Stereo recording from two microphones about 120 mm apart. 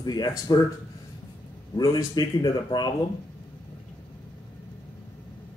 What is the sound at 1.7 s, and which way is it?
Speech, 35° left (ahead or behind).